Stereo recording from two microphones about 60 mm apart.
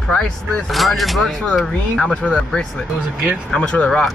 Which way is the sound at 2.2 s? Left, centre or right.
Centre.